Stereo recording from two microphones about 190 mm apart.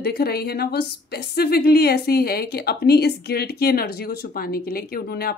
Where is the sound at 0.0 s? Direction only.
60° left (ahead or behind).